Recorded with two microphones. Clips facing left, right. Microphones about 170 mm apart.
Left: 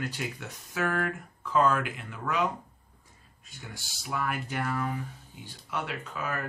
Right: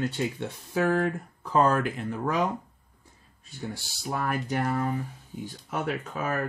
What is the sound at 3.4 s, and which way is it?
Speech, 35° right (ahead or behind).